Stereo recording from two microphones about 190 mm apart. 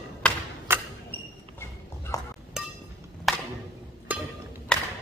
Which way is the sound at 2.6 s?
Centre (ahead or behind).